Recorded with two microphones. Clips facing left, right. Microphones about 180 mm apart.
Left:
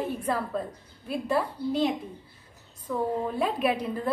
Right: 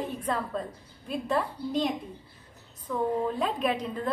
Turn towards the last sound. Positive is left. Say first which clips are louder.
# left 2 dB
turn(degrees=10)  # may be behind; listen again after turning